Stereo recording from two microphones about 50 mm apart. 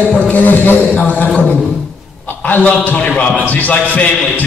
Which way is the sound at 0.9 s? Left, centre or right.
Left.